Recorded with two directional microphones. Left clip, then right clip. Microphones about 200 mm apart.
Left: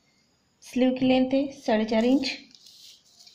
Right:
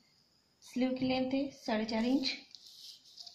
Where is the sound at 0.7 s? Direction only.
45° left (ahead or behind).